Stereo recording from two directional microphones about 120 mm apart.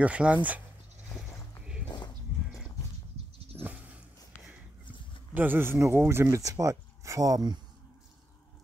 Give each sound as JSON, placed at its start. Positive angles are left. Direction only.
{"t": 0.0, "sound": "speech", "side_deg": -10}
{"t": 3.6, "sound": "a sound", "side_deg": -10}
{"t": 5.3, "sound": "speech", "side_deg": -15}